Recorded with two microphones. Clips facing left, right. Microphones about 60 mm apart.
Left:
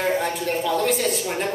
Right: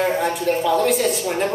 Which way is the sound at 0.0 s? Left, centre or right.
Centre.